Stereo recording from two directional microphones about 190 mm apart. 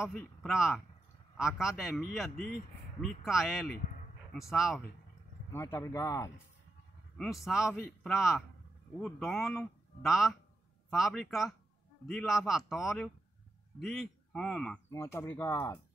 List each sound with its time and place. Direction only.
0.0 s speech: 5° right (ahead or behind)
5.5 s speech: 15° left (ahead or behind)
7.2 s a man's voice: centre (ahead or behind)
14.9 s speech: 15° left (ahead or behind)